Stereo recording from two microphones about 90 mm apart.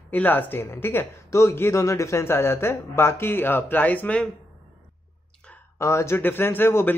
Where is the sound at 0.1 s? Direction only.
20° left (ahead or behind).